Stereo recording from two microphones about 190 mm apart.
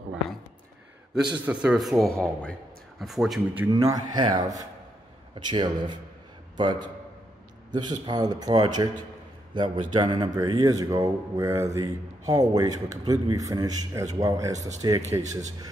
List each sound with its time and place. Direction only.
1.1 s a man's voice: 5° right (ahead or behind)
3.7 s a man's voice: 20° right (ahead or behind)